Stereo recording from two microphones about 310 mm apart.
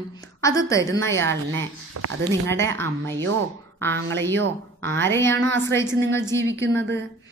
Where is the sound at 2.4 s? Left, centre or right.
Centre.